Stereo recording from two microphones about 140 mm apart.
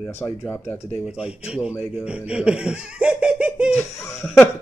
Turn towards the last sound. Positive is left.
turn(degrees=0)  # may be behind; listen again after turning